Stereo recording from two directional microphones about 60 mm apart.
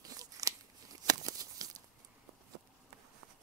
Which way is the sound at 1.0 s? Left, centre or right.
Right.